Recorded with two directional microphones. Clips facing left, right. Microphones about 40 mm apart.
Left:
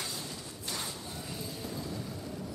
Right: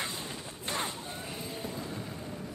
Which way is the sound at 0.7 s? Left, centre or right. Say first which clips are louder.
Right 5 dB; right.